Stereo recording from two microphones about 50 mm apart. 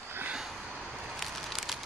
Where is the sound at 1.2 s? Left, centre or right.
Centre.